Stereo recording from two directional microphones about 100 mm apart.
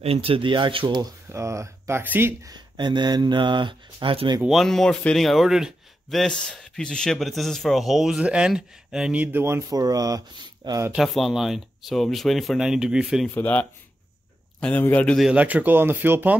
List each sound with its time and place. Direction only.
0.0 s speech: 75° right (ahead or behind); by 1.0 s 55° right (ahead or behind)
1.3 s speech: 30° right (ahead or behind)
2.4 s speech: 45° right (ahead or behind)
4.5 s a man's voice: centre (ahead or behind); by 10.9 s 40° right (ahead or behind)
11.0 s a man's voice: centre (ahead or behind)
13.3 s a man's voice: 15° left (ahead or behind)
15.3 s speech: 15° right (ahead or behind)